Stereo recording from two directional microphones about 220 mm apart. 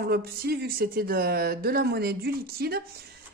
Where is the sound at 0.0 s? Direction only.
45° right (ahead or behind).